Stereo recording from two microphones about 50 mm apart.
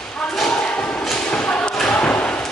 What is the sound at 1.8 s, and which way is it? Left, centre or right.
Slam, left.